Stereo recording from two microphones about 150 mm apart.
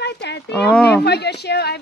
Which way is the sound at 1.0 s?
90° left.